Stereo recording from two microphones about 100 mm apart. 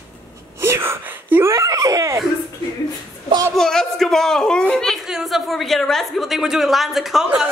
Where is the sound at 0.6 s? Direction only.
25° right (ahead or behind).